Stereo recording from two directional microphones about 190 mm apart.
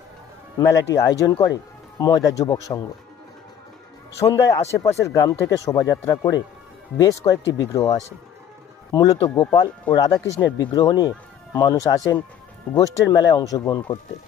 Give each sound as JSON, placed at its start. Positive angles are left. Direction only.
{"t": 0.6, "sound": "speech", "side_deg": 15}
{"t": 4.4, "sound": "speech", "side_deg": 15}